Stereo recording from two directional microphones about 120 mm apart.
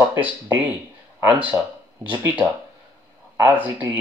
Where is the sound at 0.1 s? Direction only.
15° right (ahead or behind).